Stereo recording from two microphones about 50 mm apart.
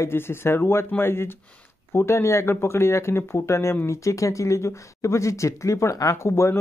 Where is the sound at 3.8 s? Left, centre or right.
Left.